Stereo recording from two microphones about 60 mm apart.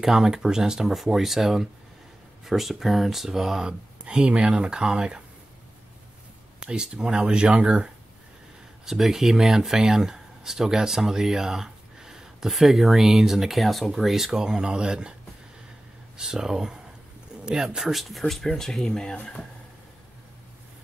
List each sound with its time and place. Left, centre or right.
0.0 s speech: centre
6.6 s speech: centre
8.8 s speech: centre
16.2 s speech: centre
18.5 s speech: centre